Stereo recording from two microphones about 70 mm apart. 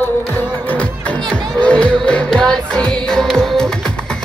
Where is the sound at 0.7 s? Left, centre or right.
Centre.